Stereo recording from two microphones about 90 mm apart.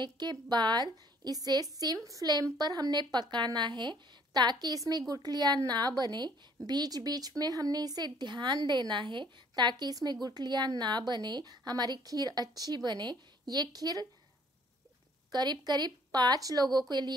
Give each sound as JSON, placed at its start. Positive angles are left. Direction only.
{"t": 0.0, "sound": "a woman's voice", "side_deg": -55}
{"t": 15.3, "sound": "a woman's voice", "side_deg": -50}